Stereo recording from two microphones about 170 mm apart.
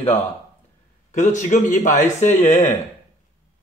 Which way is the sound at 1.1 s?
45° left (ahead or behind).